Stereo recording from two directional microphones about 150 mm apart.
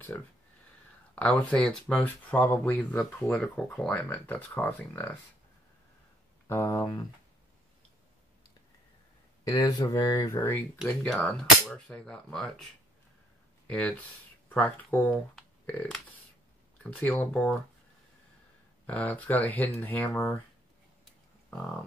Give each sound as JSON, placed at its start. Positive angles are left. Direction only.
{"t": 1.1, "sound": "speech", "side_deg": 10}
{"t": 6.4, "sound": "speech", "side_deg": 20}
{"t": 9.4, "sound": "speech", "side_deg": 25}
{"t": 11.1, "sound": "speech", "side_deg": 5}
{"t": 13.7, "sound": "speech", "side_deg": 10}
{"t": 18.9, "sound": "speech", "side_deg": 10}
{"t": 21.0, "sound": "a sound", "side_deg": 5}